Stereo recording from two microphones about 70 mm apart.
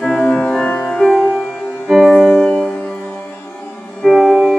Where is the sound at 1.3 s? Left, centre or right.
Centre.